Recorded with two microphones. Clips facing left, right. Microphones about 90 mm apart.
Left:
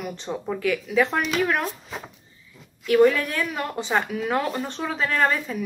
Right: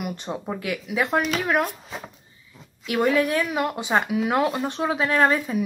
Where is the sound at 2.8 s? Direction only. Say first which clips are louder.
Left 3 dB; 15° right (ahead or behind).